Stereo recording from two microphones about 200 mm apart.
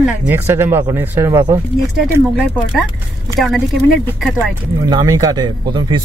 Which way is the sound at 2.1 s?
5° right (ahead or behind).